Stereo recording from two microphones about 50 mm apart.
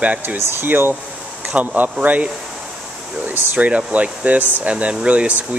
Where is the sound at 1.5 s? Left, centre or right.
Right.